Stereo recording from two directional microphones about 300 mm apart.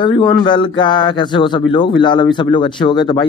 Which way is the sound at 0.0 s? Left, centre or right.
Centre.